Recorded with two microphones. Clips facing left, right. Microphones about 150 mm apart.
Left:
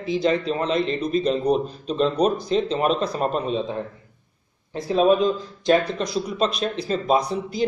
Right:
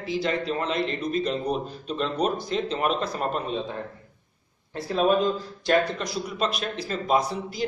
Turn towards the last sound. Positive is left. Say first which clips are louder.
# left 4 dB
turn(degrees=20)  # may be behind; listen again after turning